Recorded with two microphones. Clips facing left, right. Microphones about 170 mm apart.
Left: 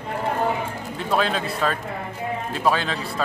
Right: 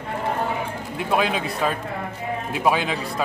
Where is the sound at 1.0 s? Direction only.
10° right (ahead or behind).